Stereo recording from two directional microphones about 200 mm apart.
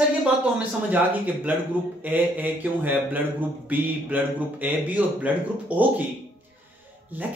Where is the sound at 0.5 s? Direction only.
10° right (ahead or behind).